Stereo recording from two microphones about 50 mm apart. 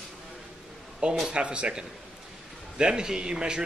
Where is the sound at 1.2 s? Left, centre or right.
Right.